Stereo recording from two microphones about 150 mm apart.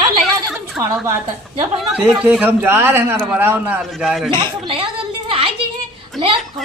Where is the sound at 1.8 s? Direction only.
5° right (ahead or behind).